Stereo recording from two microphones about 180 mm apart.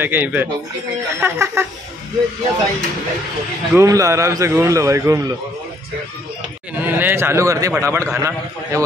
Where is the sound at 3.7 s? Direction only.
15° right (ahead or behind).